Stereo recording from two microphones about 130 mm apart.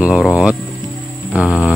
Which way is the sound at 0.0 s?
5° right (ahead or behind).